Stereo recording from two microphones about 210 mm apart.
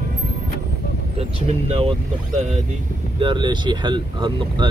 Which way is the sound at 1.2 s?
30° right (ahead or behind).